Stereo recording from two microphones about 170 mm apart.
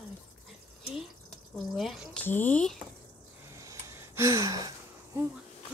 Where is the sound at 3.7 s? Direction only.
15° right (ahead or behind).